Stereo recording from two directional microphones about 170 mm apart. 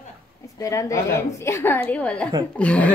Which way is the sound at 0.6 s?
20° left (ahead or behind).